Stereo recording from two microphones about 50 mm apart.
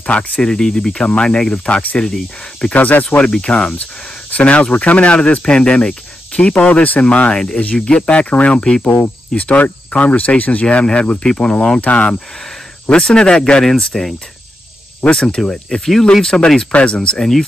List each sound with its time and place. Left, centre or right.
0.0 s speech: left
0.4 s speech: centre
1.5 s speech: left
3.3 s speech: centre
6.7 s speech: left
13.0 s speech: centre
15.1 s speech: centre
17.2 s speech: centre